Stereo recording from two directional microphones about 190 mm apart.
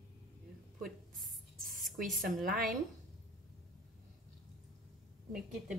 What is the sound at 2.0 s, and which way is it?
Speech, 45° right (ahead or behind).